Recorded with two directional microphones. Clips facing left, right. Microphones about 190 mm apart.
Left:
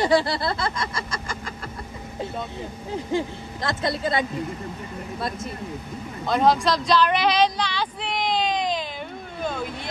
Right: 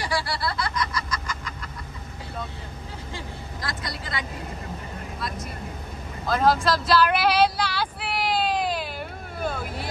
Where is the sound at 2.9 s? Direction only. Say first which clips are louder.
Left 13 dB; 20° left (ahead or behind).